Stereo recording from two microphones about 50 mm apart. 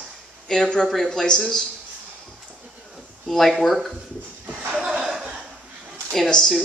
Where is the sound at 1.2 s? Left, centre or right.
Centre.